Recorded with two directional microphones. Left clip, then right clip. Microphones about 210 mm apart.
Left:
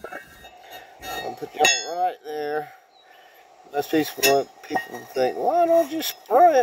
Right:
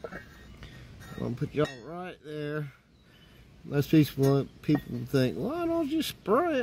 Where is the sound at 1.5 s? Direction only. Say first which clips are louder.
Left 12 dB; 45° right (ahead or behind).